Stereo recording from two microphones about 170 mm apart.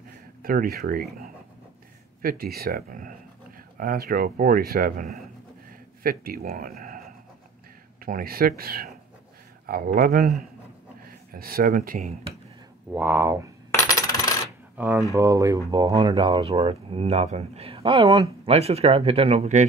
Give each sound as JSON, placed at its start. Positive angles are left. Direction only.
{"t": 0.4, "sound": "speech", "side_deg": -60}
{"t": 2.2, "sound": "speech", "side_deg": -60}
{"t": 8.0, "sound": "speech", "side_deg": -60}
{"t": 9.9, "sound": "speech", "side_deg": -55}
{"t": 12.9, "sound": "speech", "side_deg": -10}
{"t": 13.7, "sound": "coin", "side_deg": 20}
{"t": 14.8, "sound": "speech", "side_deg": -10}
{"t": 18.4, "sound": "speech", "side_deg": -35}